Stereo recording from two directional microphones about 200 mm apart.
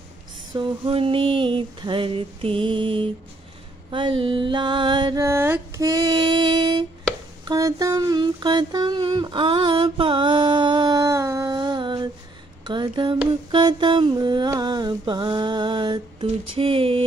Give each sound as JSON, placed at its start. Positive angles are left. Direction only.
{"t": 0.5, "sound": "mantra", "side_deg": -25}
{"t": 7.4, "sound": "a sound", "side_deg": -20}
{"t": 13.5, "sound": "mantra", "side_deg": -25}